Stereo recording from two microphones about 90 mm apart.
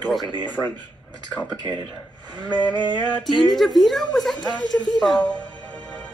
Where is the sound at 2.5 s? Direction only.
55° left (ahead or behind).